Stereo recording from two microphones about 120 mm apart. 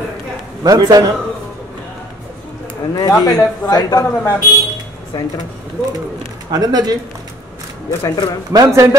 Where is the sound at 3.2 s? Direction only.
30° left (ahead or behind).